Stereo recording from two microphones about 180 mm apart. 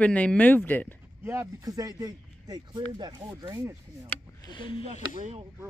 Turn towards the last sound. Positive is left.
turn(degrees=30)  # may be behind; listen again after turning